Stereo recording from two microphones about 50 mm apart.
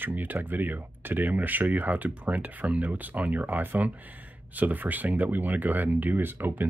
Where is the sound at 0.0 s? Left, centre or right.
Right.